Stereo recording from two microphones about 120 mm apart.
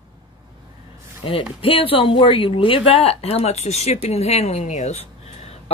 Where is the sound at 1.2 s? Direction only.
45° left (ahead or behind); by 5.0 s 85° left.